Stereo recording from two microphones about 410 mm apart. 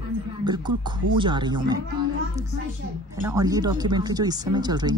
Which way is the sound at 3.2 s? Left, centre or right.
Centre.